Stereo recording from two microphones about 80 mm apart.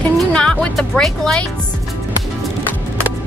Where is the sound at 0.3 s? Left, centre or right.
Centre.